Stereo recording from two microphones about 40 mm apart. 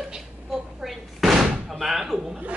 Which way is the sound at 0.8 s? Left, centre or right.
Centre.